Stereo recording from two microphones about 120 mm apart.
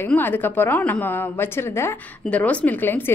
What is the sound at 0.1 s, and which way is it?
A woman's voice, 15° left (ahead or behind).